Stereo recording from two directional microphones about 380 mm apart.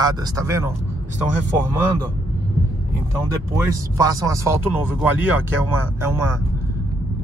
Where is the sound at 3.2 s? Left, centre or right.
Centre.